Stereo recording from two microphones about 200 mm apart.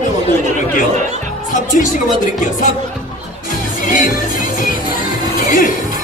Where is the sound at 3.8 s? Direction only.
40° left (ahead or behind).